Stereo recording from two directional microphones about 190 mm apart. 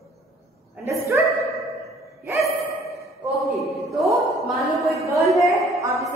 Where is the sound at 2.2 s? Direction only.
15° right (ahead or behind).